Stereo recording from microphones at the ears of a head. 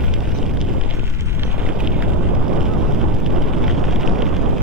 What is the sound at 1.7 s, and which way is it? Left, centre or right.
Vehicle, right.